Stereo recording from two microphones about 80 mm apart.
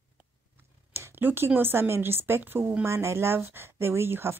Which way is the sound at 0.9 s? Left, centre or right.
Right.